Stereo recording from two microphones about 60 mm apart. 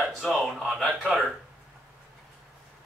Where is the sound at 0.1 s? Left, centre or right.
Centre.